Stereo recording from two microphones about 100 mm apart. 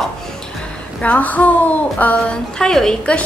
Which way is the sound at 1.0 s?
15° left (ahead or behind).